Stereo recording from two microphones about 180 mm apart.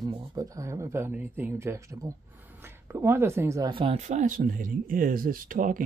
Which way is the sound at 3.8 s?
35° right (ahead or behind).